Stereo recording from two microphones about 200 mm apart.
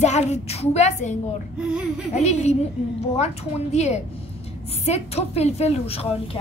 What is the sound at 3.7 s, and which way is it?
A woman's voice, 35° left (ahead or behind).